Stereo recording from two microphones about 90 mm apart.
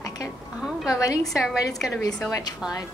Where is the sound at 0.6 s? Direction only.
5° right (ahead or behind).